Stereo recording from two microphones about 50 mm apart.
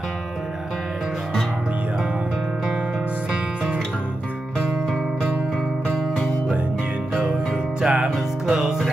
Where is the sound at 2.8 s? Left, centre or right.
Centre.